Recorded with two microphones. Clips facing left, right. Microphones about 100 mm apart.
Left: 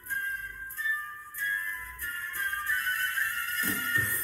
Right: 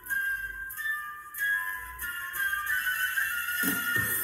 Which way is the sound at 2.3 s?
25° right (ahead or behind).